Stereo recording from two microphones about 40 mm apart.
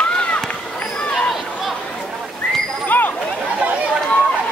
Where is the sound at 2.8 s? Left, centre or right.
Left.